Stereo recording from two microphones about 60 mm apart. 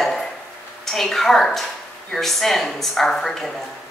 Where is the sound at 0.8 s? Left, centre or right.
Centre.